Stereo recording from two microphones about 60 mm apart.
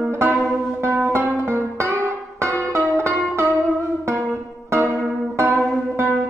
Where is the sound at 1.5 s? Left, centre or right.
Right.